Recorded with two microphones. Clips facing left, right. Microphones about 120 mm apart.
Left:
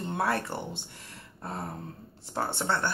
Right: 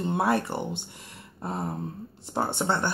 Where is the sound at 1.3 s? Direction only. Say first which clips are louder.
Right 5 dB; 20° right (ahead or behind).